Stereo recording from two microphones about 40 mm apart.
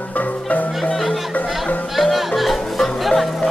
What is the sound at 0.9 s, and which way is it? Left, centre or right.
Music, centre.